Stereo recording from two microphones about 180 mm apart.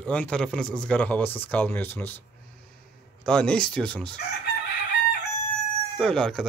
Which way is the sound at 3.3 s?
5° left (ahead or behind).